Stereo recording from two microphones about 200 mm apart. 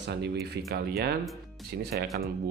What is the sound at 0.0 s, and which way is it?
Speech, 55° right (ahead or behind).